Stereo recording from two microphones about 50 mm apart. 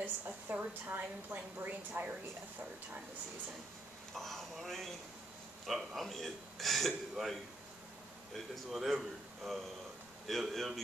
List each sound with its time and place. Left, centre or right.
0.0 s a woman's voice: right
4.1 s a man's voice: centre
8.7 s a man's voice: centre